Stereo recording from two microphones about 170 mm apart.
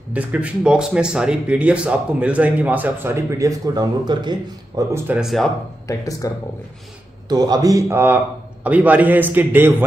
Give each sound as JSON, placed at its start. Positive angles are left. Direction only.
{"t": 0.1, "sound": "speech", "side_deg": -10}
{"t": 5.0, "sound": "speech", "side_deg": -5}
{"t": 5.9, "sound": "speech", "side_deg": 20}
{"t": 7.2, "sound": "a man's voice", "side_deg": -25}